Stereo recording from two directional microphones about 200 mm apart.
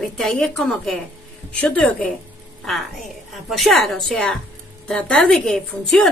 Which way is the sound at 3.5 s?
Centre (ahead or behind).